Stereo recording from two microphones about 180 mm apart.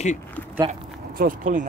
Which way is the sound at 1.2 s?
50° right (ahead or behind).